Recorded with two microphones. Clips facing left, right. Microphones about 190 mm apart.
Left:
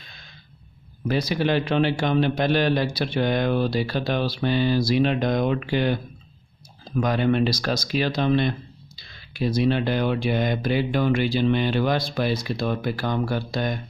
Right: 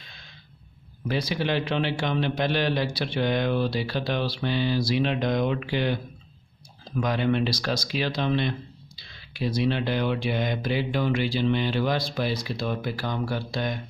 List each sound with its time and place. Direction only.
1.0 s speech: 45° left (ahead or behind)